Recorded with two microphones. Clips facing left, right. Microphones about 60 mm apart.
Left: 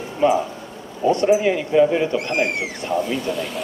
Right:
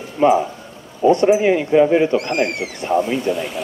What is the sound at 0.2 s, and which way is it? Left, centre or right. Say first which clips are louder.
A man's voice: right 3 dB; right.